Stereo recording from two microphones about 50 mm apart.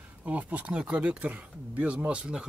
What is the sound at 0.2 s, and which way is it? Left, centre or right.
Speech, right.